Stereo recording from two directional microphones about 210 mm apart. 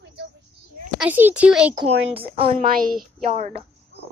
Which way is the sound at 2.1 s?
25° right (ahead or behind).